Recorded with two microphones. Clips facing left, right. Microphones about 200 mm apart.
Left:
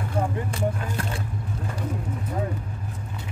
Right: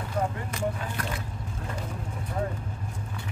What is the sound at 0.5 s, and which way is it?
Speech, 30° left (ahead or behind).